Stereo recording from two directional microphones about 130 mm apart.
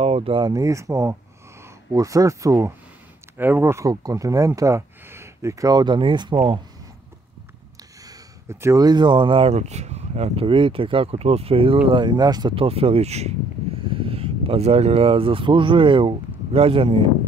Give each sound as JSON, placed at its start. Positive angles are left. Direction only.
{"t": 0.0, "sound": "a sound", "side_deg": -45}
{"t": 0.5, "sound": "speech", "side_deg": -25}
{"t": 8.0, "sound": "speech", "side_deg": -25}
{"t": 12.5, "sound": "speech", "side_deg": -45}
{"t": 13.8, "sound": "speech", "side_deg": -45}